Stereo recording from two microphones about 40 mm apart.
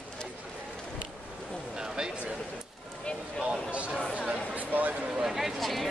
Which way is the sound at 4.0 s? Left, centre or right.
Left.